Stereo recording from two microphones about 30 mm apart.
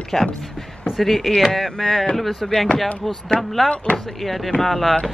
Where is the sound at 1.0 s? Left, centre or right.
Centre.